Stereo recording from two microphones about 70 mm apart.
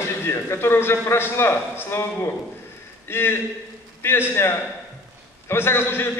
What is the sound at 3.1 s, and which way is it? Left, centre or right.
A man's voice, left.